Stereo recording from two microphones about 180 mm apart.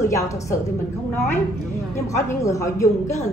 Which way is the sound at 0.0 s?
15° left (ahead or behind).